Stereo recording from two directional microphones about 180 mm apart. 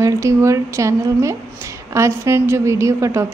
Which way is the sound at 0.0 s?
15° right (ahead or behind).